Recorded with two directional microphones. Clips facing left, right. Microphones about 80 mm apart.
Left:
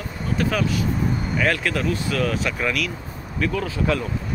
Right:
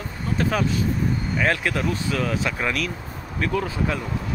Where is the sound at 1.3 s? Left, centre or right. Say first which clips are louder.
Left 1 dB; right.